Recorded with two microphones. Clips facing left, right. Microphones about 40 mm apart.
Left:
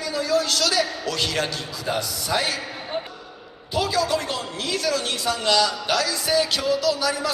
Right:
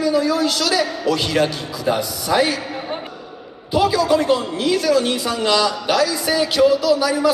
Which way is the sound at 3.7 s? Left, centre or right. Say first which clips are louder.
Right 6 dB; centre.